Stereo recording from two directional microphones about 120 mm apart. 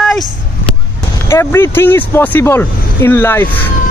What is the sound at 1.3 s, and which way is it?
Speech, 20° left (ahead or behind).